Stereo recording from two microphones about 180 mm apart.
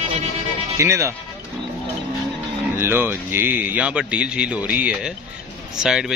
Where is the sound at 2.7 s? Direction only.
10° right (ahead or behind).